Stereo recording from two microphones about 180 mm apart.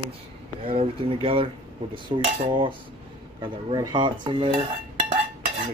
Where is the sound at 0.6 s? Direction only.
30° right (ahead or behind).